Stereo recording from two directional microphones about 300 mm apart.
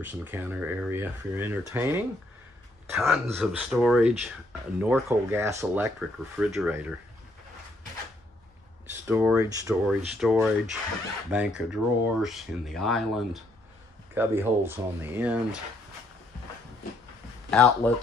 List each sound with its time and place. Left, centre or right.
0.0 s speech: centre
9.0 s speech: centre
17.5 s speech: centre